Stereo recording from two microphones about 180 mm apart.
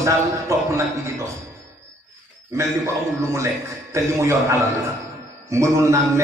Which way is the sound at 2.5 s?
15° right (ahead or behind).